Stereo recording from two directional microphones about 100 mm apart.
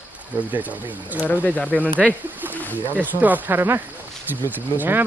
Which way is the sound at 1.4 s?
15° left (ahead or behind).